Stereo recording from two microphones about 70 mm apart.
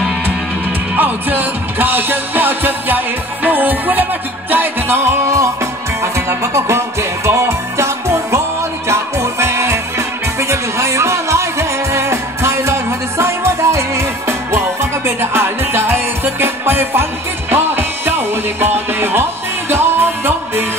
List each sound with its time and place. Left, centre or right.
0.9 s music: right